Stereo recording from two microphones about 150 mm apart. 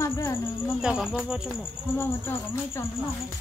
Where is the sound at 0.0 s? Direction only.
15° left (ahead or behind).